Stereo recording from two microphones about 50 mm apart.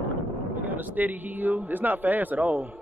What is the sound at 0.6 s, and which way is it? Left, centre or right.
Speech, right.